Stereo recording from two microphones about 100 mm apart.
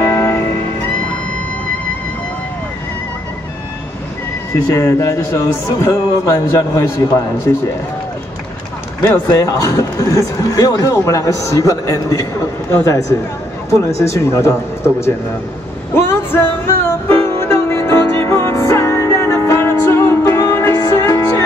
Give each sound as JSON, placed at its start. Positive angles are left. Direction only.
{"t": 0.0, "sound": "music", "side_deg": 25}
{"t": 4.6, "sound": "speech", "side_deg": 30}
{"t": 9.0, "sound": "speech", "side_deg": 30}
{"t": 15.9, "sound": "music", "side_deg": 25}